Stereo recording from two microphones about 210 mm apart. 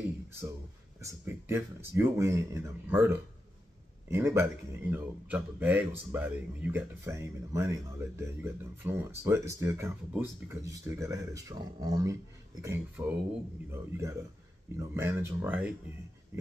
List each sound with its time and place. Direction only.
1.0 s speech: 10° right (ahead or behind)